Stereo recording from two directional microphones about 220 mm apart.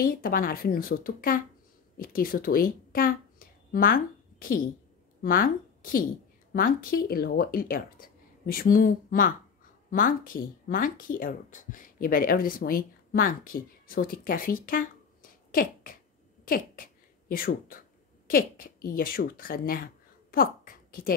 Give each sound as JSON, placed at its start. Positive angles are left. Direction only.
{"t": 0.0, "sound": "a woman's voice", "side_deg": 40}
{"t": 15.5, "sound": "a sound", "side_deg": 40}
{"t": 16.4, "sound": "speech", "side_deg": 40}